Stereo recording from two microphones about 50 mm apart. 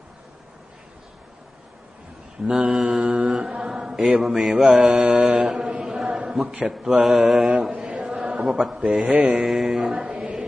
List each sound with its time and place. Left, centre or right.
2.5 s mantra: centre
6.0 s a sound: centre
6.7 s mantra: centre
7.7 s chant: centre
8.5 s mantra: centre
8.7 s a man's voice: centre
9.4 s mantra: centre
9.8 s music: right